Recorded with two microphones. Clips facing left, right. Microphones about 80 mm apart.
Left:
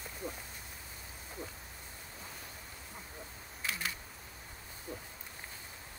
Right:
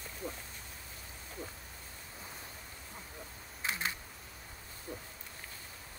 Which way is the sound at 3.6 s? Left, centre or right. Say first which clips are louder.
Right 2 dB; right.